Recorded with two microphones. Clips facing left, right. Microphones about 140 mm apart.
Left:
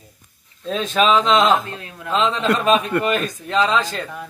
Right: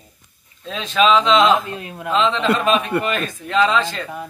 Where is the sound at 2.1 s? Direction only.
40° left (ahead or behind).